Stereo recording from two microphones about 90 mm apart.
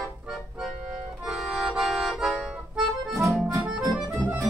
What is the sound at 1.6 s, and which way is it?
Accordion, 5° right (ahead or behind).